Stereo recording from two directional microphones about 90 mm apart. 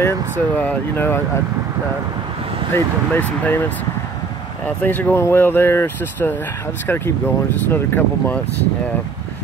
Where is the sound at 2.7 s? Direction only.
20° left (ahead or behind).